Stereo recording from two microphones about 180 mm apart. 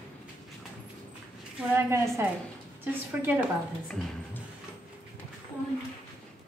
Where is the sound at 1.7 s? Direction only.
15° right (ahead or behind).